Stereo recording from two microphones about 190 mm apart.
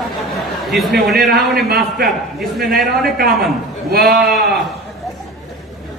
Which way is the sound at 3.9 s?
50° right (ahead or behind).